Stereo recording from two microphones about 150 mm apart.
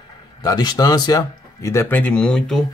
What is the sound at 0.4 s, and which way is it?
Speech, 25° left (ahead or behind).